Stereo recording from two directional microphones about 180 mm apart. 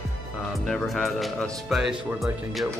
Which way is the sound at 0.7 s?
5° left (ahead or behind).